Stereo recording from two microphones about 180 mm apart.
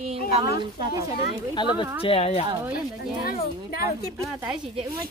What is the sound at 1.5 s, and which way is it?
Speech, 25° left (ahead or behind).